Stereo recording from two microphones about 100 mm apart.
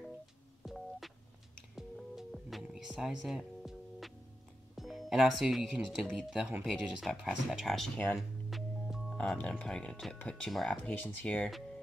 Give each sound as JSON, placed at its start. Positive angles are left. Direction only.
{"t": 0.7, "sound": "music", "side_deg": 0}
{"t": 4.7, "sound": "speech", "side_deg": 0}
{"t": 8.2, "sound": "music", "side_deg": 0}
{"t": 9.4, "sound": "speech", "side_deg": 10}
{"t": 10.9, "sound": "speech", "side_deg": 15}